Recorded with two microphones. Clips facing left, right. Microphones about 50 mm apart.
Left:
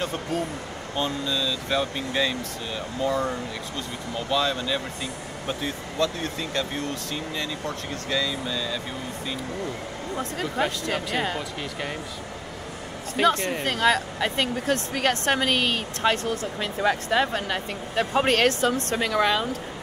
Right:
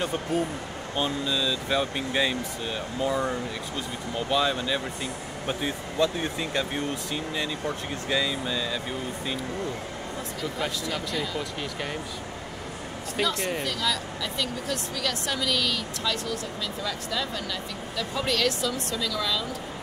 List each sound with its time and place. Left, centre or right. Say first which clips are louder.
0.0 s speech: right 1 dB; centre
10.1 s speech: left 6 dB; left
13.1 s speech: left 6 dB; left